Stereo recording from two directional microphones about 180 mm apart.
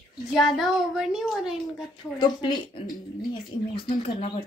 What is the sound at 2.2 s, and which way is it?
Speech, 25° left (ahead or behind).